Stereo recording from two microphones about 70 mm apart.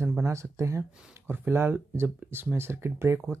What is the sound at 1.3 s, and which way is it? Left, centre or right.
Speech, right.